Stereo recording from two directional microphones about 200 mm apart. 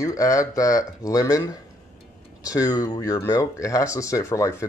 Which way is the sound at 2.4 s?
15° left (ahead or behind).